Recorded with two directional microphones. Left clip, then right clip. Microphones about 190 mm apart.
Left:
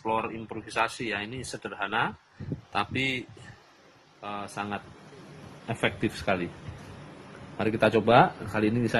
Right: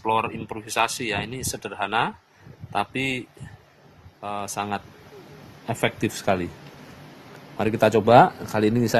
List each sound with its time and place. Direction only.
0.0 s speech: 35° right (ahead or behind)
7.5 s speech: 45° right (ahead or behind)